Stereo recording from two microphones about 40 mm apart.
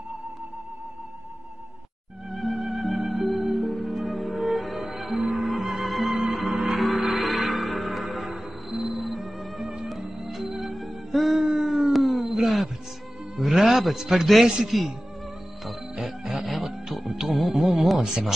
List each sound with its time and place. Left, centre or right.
2.3 s music: centre
11.4 s a sound: centre
14.4 s a man's voice: centre
15.6 s music: centre